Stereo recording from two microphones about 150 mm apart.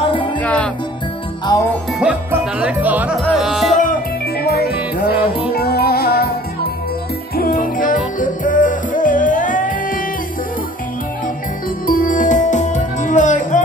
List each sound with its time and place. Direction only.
0.0 s music: 35° left (ahead or behind)
0.4 s music: 10° left (ahead or behind)
2.0 s music: 5° right (ahead or behind)
4.4 s music: 90° left
7.3 s music: 70° left (ahead or behind)
11.8 s music: 65° left (ahead or behind)